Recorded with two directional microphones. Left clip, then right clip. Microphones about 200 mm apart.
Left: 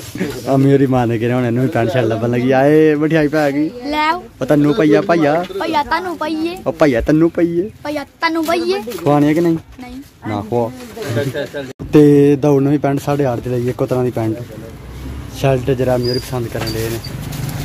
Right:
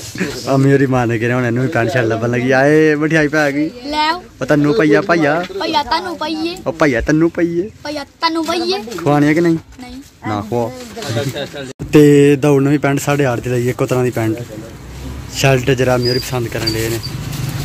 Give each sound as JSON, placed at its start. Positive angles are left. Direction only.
{"t": 0.2, "sound": "a man's voice", "side_deg": 5}
{"t": 11.9, "sound": "speech", "side_deg": 0}
{"t": 15.3, "sound": "speech", "side_deg": -5}